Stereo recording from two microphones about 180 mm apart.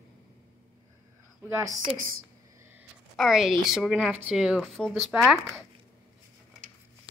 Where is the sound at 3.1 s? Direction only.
Centre (ahead or behind).